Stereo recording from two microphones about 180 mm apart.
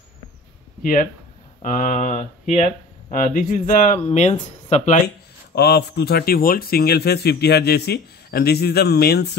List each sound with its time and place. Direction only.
1.6 s speech: 45° left (ahead or behind)
5.0 s speech: 65° left (ahead or behind)